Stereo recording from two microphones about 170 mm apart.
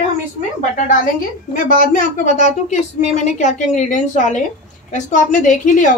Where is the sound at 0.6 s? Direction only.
50° left (ahead or behind).